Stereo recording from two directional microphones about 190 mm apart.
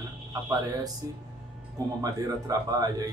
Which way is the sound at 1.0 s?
15° right (ahead or behind).